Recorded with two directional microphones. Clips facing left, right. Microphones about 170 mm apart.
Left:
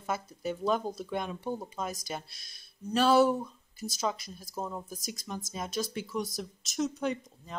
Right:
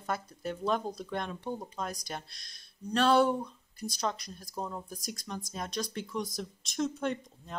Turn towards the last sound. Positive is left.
turn(degrees=0)  # may be behind; listen again after turning